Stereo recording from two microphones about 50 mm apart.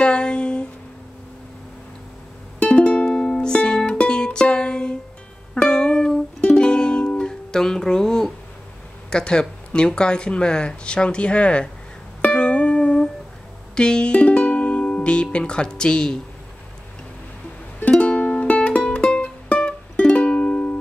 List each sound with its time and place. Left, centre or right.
0.0 s a sound: centre
2.6 s music: left
9.1 s speech: centre
12.2 s music: left
13.7 s speech: centre
17.9 s music: left